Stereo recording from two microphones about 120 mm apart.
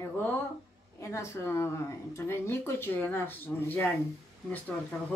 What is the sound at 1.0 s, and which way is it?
Speech, 25° left (ahead or behind).